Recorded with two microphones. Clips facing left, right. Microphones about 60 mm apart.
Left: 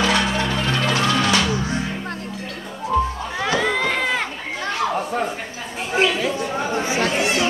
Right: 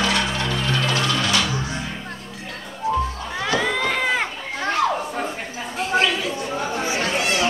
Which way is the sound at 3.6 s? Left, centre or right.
Centre.